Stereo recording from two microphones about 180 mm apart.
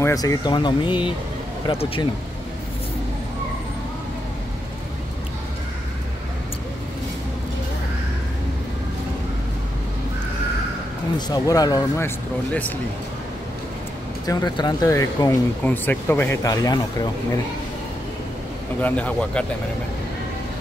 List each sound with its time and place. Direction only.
0.0 s speech: 20° left (ahead or behind)
11.1 s speech: 20° left (ahead or behind)
14.2 s speech: 20° left (ahead or behind)
18.8 s speech: 10° left (ahead or behind)